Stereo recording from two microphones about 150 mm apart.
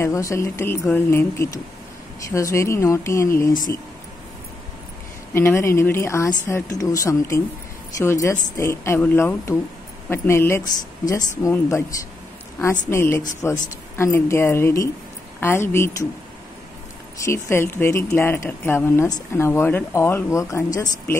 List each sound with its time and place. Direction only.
0.0 s speech: 20° left (ahead or behind)
5.3 s speech: 15° left (ahead or behind)
12.9 s speech: 15° left (ahead or behind)
17.2 s speech: 15° left (ahead or behind)